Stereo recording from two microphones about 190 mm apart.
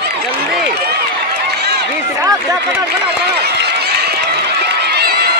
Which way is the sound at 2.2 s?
20° right (ahead or behind).